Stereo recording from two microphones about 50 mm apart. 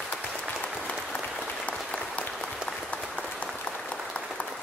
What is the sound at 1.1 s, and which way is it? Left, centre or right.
Applause, left.